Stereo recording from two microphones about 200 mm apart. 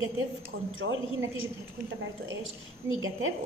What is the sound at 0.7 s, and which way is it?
Speech, 85° right.